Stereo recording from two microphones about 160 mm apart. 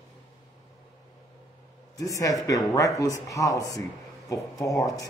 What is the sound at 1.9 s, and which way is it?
A man's voice, 20° left (ahead or behind).